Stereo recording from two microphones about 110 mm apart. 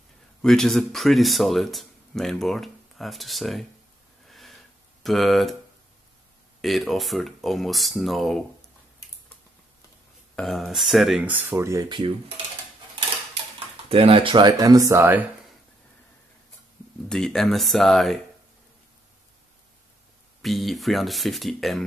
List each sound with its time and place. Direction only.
0.4 s speech: 5° left (ahead or behind)
4.3 s a sound: centre (ahead or behind)
5.0 s speech: centre (ahead or behind)
6.6 s speech: centre (ahead or behind)
10.3 s speech: 5° left (ahead or behind)
11.2 s speech: 20° right (ahead or behind)
13.8 s speech: 60° right (ahead or behind); by 15.2 s 20° right (ahead or behind)
17.1 s speech: 5° left (ahead or behind)
20.4 s speech: centre (ahead or behind)